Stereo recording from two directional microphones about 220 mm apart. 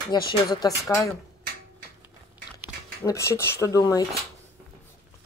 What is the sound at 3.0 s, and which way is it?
Speech, 10° left (ahead or behind).